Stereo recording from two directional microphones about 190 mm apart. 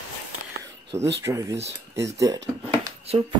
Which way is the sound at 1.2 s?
15° right (ahead or behind).